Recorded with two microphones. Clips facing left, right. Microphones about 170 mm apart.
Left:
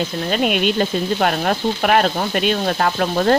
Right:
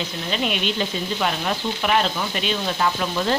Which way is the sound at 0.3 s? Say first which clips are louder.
Left 6 dB; 50° left (ahead or behind).